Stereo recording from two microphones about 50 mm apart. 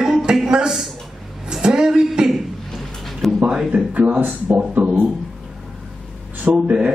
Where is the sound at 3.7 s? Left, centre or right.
Right.